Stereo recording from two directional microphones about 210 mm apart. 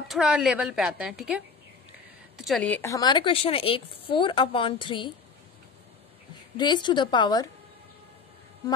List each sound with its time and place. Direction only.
0.1 s a woman's voice: centre (ahead or behind); by 5.1 s 25° left (ahead or behind)
6.5 s a woman's voice: 20° left (ahead or behind)